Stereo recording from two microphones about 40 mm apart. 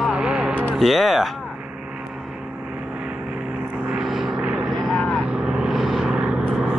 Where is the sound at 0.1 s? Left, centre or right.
Right.